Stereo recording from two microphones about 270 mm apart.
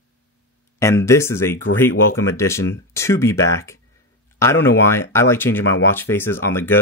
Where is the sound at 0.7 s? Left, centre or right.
Centre.